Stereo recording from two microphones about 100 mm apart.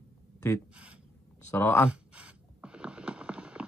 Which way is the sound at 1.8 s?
10° right (ahead or behind).